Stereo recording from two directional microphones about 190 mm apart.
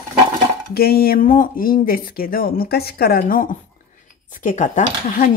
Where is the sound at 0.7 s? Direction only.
55° left (ahead or behind).